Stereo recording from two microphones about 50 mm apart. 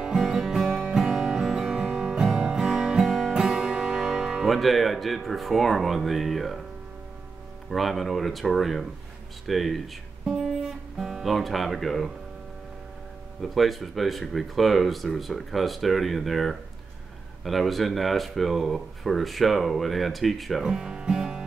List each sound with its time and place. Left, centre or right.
0.2 s music: centre
4.1 s speech: centre
7.7 s speech: centre
10.2 s speech: centre
13.4 s speech: centre
20.6 s music: centre